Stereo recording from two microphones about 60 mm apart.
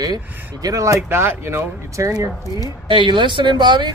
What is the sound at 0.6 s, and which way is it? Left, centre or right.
Speech, right.